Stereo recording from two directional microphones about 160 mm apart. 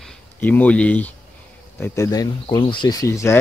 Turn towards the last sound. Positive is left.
turn(degrees=20)  # may be behind; listen again after turning